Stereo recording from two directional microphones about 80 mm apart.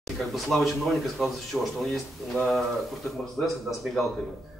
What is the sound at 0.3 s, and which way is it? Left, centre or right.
A man's voice, centre.